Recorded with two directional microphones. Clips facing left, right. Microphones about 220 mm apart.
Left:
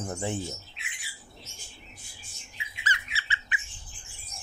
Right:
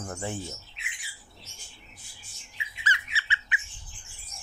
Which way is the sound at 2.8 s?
40° left (ahead or behind).